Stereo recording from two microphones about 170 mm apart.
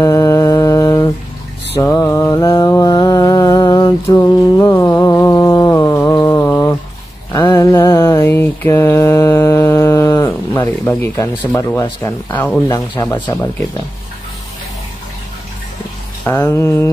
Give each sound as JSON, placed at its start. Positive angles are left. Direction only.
{"t": 0.0, "sound": "humming", "side_deg": 20}
{"t": 1.8, "sound": "mantra", "side_deg": 15}
{"t": 11.5, "sound": "speech", "side_deg": 20}
{"t": 16.3, "sound": "speech", "side_deg": 15}